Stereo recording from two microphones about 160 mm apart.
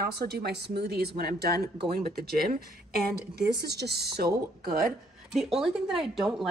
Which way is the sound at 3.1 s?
85° right.